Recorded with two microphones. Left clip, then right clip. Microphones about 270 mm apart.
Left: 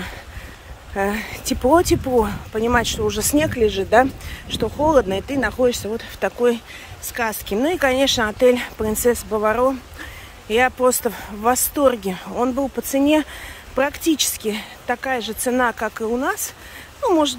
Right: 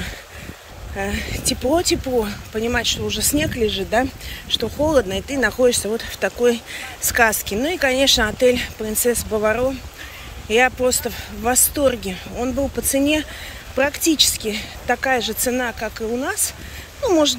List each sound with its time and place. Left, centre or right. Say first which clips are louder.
0.9 s speech: left 3 dB; centre